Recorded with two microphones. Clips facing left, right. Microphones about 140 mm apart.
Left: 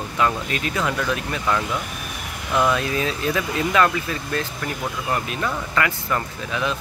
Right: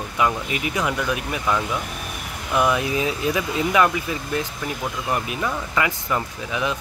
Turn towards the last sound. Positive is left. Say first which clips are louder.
# even
turn(degrees=-15)  # may be behind; listen again after turning